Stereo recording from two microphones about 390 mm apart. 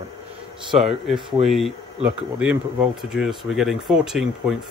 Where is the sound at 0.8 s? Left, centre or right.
Centre.